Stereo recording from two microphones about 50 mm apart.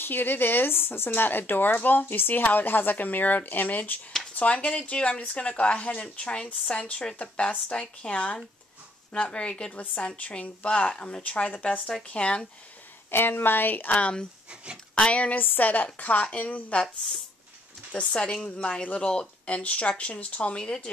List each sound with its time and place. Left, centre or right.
0.0 s speech: left; by 9.8 s centre
9.8 s speech: left
13.1 s a woman's voice: left
13.9 s speech: left
14.5 s speech: right
15.0 s speech: left
15.3 s speech: left
17.9 s a woman's voice: centre